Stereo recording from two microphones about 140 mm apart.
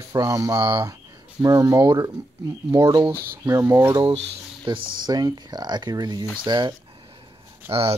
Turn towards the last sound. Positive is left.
turn(degrees=-45)  # may be behind; listen again after turning